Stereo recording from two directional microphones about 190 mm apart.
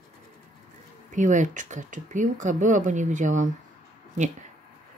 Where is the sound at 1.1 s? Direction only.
40° right (ahead or behind).